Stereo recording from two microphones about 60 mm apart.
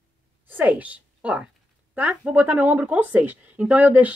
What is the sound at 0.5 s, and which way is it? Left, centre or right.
A woman's voice, right.